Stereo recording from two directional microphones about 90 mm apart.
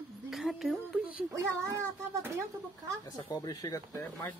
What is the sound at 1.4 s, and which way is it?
A child's voice, 30° right (ahead or behind).